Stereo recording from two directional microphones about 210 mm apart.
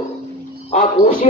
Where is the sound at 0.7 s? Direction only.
35° left (ahead or behind).